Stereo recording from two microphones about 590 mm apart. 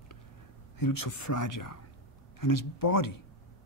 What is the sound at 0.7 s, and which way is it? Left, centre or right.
Speech, left.